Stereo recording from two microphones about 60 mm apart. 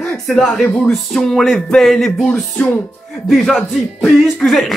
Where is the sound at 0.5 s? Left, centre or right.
Centre.